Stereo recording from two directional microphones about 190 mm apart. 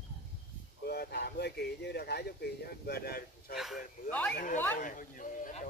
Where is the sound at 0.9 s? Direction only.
60° left (ahead or behind).